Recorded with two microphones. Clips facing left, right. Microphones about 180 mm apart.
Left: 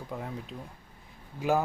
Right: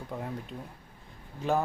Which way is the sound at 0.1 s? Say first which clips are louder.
Right 1 dB; centre (ahead or behind).